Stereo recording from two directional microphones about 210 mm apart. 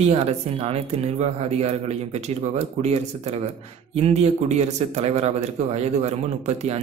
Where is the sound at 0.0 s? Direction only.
30° right (ahead or behind).